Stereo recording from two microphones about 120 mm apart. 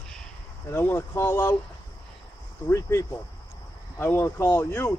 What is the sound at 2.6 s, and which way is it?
A man's voice, 25° left (ahead or behind).